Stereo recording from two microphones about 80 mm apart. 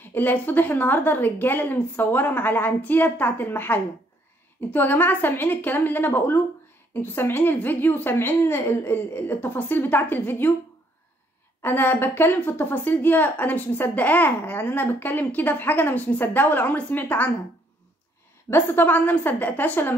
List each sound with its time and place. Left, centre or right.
0.0 s a woman's voice: left
11.6 s a woman's voice: left
18.5 s a woman's voice: left